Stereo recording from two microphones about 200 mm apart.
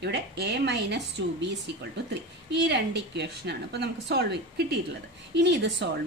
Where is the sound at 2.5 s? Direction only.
60° right (ahead or behind).